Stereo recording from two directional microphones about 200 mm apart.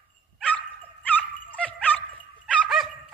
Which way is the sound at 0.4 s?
5° left (ahead or behind).